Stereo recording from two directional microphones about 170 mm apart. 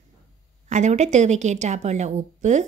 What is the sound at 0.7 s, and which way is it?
A woman's voice, 45° right (ahead or behind).